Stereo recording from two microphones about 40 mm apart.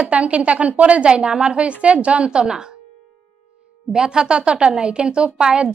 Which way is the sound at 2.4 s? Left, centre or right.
Centre.